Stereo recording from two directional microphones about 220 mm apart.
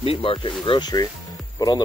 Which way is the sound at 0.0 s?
25° left (ahead or behind).